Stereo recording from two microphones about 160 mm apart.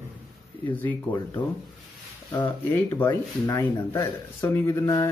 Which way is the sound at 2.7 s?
15° left (ahead or behind).